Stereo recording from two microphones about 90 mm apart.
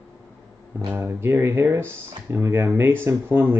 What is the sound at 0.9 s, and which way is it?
Speech, 25° right (ahead or behind).